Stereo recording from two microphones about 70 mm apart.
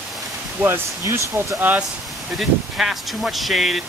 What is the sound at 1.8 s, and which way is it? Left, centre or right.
Speech, centre.